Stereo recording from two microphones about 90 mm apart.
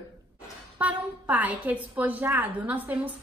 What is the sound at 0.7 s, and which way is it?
A woman's voice, 15° right (ahead or behind).